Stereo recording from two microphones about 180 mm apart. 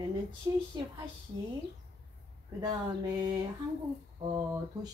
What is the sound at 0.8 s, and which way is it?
Speech, 25° right (ahead or behind).